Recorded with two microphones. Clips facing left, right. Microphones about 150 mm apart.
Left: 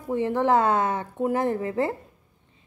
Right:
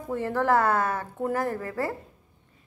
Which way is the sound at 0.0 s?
15° left (ahead or behind).